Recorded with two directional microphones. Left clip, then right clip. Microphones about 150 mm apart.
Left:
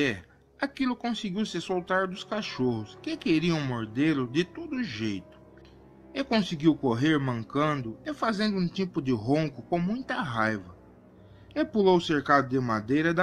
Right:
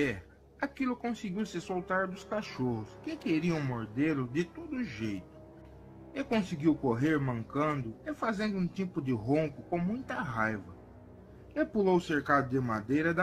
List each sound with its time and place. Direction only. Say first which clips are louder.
0.0 s a man's voice: left 4 dB; 45° left (ahead or behind)
6.1 s a man's voice: left 5 dB; 40° left (ahead or behind)